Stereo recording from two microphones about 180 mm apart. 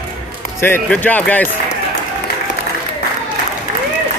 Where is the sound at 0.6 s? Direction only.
10° left (ahead or behind).